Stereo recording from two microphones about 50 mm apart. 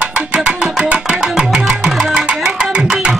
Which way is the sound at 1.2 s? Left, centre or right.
Centre.